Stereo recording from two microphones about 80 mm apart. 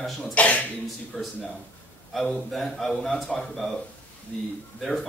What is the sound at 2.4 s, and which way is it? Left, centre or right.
A man's voice, centre.